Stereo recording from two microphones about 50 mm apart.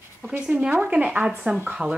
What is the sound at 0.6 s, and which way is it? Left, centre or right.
Speech, right.